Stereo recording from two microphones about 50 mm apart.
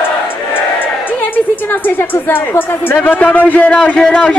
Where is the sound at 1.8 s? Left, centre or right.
Left.